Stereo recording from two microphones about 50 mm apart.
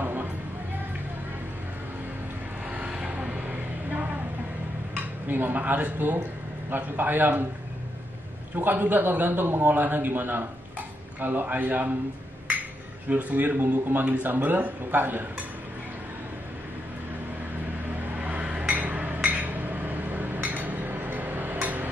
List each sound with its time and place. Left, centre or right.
0.0 s music: right
2.9 s a sound: right
5.3 s a man's voice: right
8.5 s a man's voice: right
13.1 s a man's voice: right
18.1 s a sound: right